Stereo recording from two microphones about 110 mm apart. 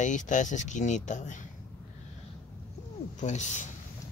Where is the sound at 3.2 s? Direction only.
90° left.